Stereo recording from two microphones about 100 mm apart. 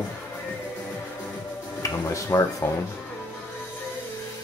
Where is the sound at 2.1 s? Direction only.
30° left (ahead or behind).